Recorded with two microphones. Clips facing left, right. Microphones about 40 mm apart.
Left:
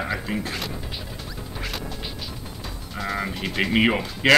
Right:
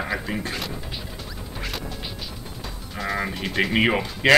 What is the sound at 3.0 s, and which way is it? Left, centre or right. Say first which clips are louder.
Speech: right 1 dB; centre.